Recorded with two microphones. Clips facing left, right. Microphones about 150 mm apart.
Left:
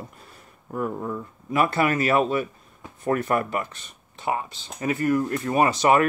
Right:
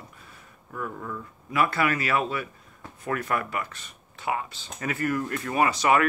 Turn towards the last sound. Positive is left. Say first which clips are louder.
# left 3 dB
turn(degrees=25)  # may be behind; listen again after turning